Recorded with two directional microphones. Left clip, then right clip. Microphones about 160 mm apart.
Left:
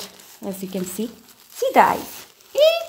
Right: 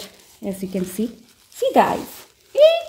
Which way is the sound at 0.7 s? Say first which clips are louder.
Right 2 dB; 25° left (ahead or behind).